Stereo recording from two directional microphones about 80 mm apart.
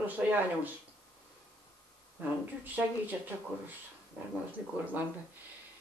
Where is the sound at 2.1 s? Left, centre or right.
Right.